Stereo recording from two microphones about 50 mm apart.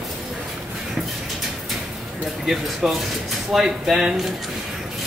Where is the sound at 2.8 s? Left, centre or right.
Centre.